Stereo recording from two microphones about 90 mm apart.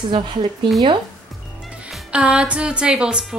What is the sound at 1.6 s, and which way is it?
Music, 10° right (ahead or behind).